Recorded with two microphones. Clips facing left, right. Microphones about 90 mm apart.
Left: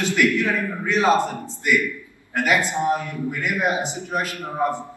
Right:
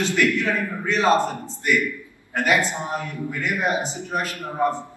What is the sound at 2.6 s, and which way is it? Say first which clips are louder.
Speech: left 4 dB; 20° right (ahead or behind).